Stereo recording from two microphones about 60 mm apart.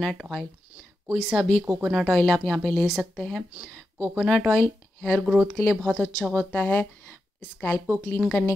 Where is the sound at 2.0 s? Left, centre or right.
Centre.